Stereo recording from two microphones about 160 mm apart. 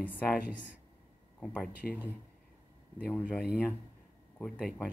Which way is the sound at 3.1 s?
10° left (ahead or behind).